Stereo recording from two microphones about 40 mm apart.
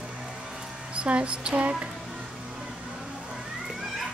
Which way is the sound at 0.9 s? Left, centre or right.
Right.